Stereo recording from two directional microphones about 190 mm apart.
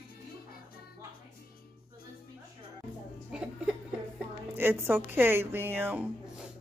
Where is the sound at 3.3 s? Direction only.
5° right (ahead or behind).